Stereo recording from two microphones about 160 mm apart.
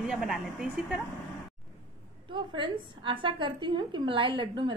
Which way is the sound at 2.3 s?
30° right (ahead or behind).